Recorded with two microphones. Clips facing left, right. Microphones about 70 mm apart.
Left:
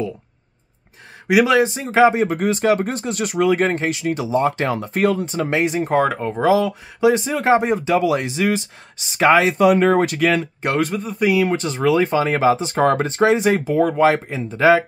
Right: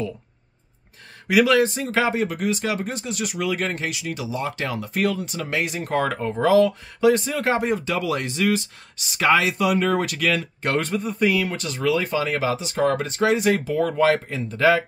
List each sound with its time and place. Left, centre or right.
1.2 s speech: centre
2.2 s speech: left
10.6 s speech: centre
11.4 s speech: left